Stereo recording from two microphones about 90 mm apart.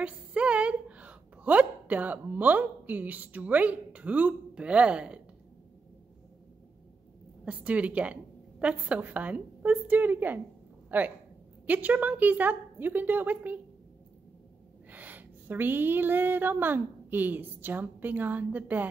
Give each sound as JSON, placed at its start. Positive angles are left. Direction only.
{"t": 0.0, "sound": "a woman's voice", "side_deg": -10}
{"t": 7.4, "sound": "a woman's voice", "side_deg": -15}
{"t": 14.9, "sound": "a woman's voice", "side_deg": -20}